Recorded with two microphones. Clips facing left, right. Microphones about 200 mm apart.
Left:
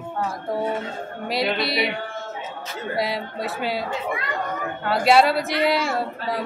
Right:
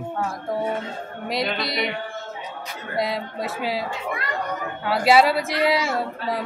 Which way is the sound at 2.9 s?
Centre (ahead or behind).